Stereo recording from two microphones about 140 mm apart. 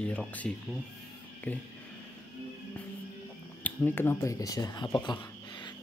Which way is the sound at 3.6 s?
15° left (ahead or behind).